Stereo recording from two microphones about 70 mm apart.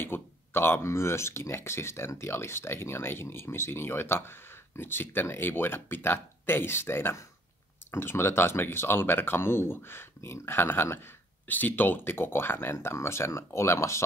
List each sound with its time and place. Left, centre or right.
0.0 s speech: left